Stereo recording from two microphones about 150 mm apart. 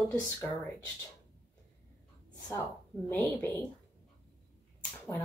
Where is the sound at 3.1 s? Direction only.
10° left (ahead or behind).